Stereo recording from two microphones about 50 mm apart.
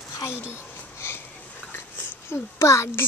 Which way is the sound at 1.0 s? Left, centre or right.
Left.